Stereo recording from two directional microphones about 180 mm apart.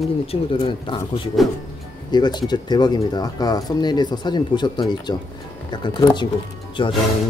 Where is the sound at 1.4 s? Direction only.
Centre (ahead or behind).